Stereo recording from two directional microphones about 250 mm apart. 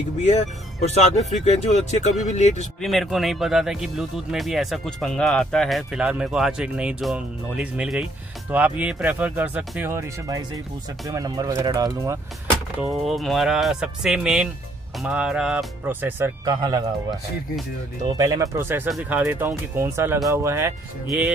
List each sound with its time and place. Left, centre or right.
0.9 s speech: left
2.8 s speech: centre
12.9 s speech: centre